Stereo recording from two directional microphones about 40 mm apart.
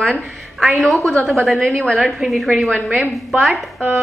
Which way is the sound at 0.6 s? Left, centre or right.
Centre.